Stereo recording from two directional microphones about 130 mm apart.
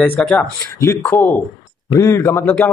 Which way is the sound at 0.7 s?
25° left (ahead or behind).